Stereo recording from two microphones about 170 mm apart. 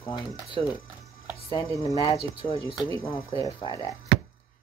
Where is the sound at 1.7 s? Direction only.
20° left (ahead or behind).